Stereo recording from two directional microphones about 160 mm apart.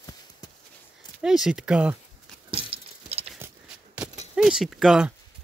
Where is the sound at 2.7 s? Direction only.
40° right (ahead or behind).